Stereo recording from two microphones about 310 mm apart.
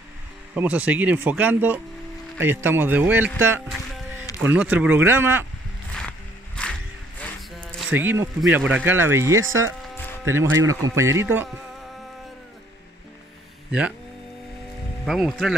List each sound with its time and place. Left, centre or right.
0.6 s speech: centre
5.9 s music: centre
9.4 s speech: right
10.2 s speech: centre
10.5 s speech: right
10.8 s speech: centre
13.7 s speech: centre
15.0 s speech: centre